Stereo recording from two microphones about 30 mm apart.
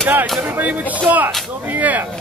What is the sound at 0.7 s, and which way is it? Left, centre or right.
Speech, right.